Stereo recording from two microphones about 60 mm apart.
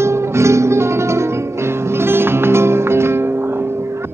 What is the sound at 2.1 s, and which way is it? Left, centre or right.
Music, right.